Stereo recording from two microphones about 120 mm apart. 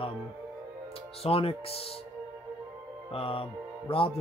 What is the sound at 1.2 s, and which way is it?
Speech, 55° left (ahead or behind).